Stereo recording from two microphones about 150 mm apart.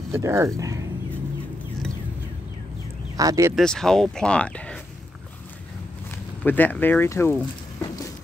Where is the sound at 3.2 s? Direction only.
20° right (ahead or behind).